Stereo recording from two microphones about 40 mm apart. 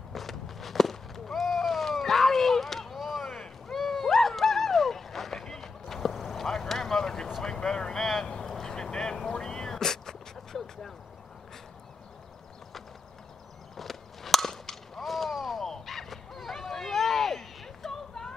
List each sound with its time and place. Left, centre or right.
0.1 s walk: centre
3.7 s a sound: centre
6.3 s vehicle: centre
8.0 s boat: centre
8.3 s vehicle: centre
9.3 s dog: centre
13.7 s skateboard: centre